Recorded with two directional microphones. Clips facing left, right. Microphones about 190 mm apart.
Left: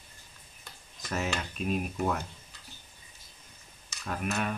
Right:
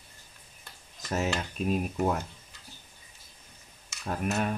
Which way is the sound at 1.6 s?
40° right (ahead or behind).